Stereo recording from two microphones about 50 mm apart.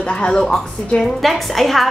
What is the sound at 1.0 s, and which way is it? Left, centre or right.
Speech, centre.